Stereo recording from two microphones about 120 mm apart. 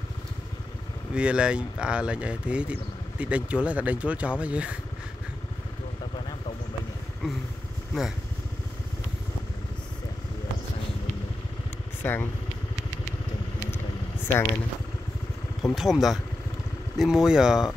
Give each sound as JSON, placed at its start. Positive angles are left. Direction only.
{"t": 1.1, "sound": "speech", "side_deg": -10}
{"t": 12.0, "sound": "speech", "side_deg": 20}
{"t": 14.2, "sound": "speech", "side_deg": 25}
{"t": 15.7, "sound": "speech", "side_deg": 0}